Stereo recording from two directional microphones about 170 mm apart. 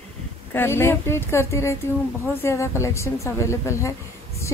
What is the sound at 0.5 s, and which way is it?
A woman's voice, 15° left (ahead or behind).